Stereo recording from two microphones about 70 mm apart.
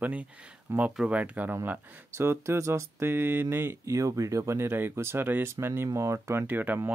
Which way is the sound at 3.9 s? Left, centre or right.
Right.